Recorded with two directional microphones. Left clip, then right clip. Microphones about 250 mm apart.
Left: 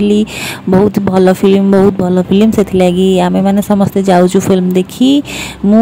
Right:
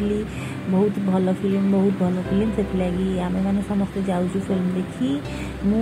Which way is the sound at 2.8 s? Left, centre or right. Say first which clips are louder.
Left 16 dB; left.